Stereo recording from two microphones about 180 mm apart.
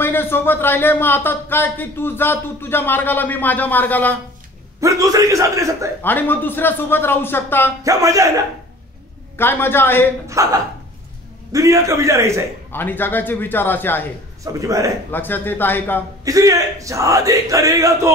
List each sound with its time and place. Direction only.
0.0 s speech: 10° left (ahead or behind)
4.7 s speech: 20° right (ahead or behind)
6.0 s speech: 10° left (ahead or behind)
7.8 s a man's voice: 20° right (ahead or behind)
9.4 s speech: 10° left (ahead or behind)
10.2 s speech: 20° right (ahead or behind)
12.7 s speech: 10° left (ahead or behind)
14.4 s a man's voice: 20° right (ahead or behind)
15.0 s speech: 10° left (ahead or behind)
16.3 s speech: 20° right (ahead or behind)